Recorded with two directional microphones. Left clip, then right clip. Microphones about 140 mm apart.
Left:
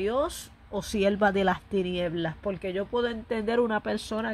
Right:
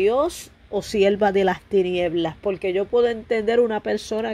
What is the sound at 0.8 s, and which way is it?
Speech, 5° right (ahead or behind).